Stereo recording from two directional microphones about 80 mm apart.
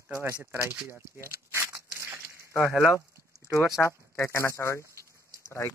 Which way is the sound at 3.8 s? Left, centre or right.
Left.